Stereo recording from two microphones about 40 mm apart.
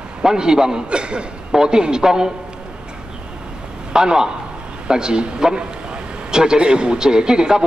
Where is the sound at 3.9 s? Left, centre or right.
Centre.